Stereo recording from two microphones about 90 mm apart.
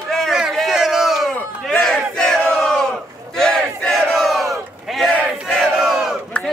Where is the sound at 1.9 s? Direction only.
5° left (ahead or behind).